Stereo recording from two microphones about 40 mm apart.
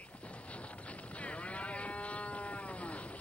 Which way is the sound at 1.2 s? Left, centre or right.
Left.